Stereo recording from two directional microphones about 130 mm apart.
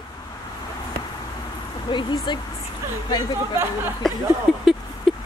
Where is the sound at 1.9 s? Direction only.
35° left (ahead or behind).